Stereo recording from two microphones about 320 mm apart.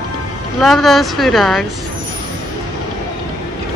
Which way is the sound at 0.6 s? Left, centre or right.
Centre.